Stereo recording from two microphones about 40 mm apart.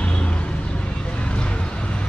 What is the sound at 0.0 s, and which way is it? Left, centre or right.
Vehicle, left.